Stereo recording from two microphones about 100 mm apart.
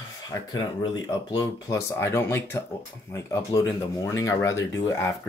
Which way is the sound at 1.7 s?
25° left (ahead or behind).